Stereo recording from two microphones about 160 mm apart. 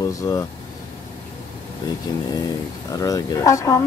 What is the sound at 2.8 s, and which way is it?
Speech, 20° left (ahead or behind).